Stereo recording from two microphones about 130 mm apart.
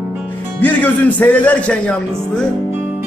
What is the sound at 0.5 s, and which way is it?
A man's voice, 10° left (ahead or behind).